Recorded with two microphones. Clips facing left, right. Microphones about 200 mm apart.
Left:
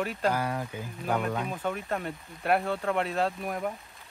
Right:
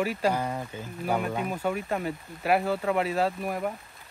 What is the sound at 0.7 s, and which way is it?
Speech, 10° left (ahead or behind).